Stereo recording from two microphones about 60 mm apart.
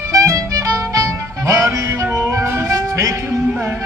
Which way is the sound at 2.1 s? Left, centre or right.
Right.